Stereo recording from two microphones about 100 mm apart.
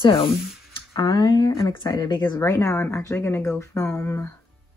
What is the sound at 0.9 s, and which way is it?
Speech, 40° left (ahead or behind).